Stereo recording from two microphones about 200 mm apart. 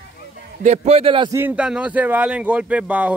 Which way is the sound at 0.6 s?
30° right (ahead or behind).